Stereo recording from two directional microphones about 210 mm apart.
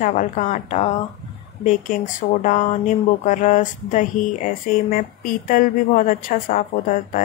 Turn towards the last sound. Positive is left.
turn(degrees=40)  # may be behind; listen again after turning